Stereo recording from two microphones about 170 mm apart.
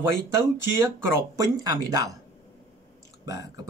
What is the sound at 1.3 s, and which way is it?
Speech, 20° right (ahead or behind).